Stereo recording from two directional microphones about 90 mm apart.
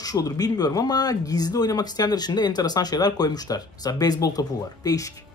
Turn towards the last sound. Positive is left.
turn(degrees=40)  # may be behind; listen again after turning